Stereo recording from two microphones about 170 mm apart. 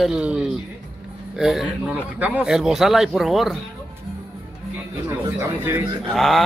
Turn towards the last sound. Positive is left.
turn(degrees=0)  # may be behind; listen again after turning